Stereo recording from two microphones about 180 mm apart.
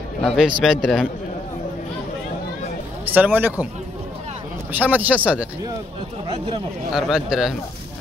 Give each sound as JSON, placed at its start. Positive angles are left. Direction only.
{"t": 0.2, "sound": "speech", "side_deg": 0}
{"t": 3.1, "sound": "speech", "side_deg": -10}
{"t": 4.7, "sound": "speech", "side_deg": -10}
{"t": 6.2, "sound": "speech", "side_deg": -25}
{"t": 6.9, "sound": "speech", "side_deg": -5}